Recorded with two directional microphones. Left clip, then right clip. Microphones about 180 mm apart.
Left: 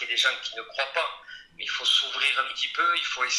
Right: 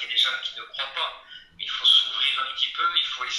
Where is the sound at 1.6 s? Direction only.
35° left (ahead or behind).